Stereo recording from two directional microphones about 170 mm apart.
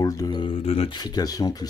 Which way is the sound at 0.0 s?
25° left (ahead or behind).